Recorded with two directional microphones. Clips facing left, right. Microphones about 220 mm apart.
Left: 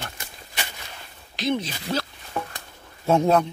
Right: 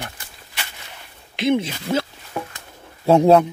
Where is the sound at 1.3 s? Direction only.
25° right (ahead or behind).